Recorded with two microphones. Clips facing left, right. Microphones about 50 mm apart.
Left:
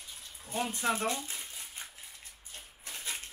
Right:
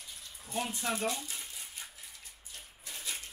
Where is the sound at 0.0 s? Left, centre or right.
Left.